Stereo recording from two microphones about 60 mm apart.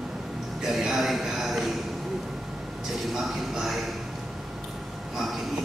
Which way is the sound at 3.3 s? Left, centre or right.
Centre.